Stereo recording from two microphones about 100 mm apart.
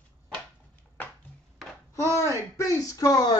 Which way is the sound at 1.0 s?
20° left (ahead or behind).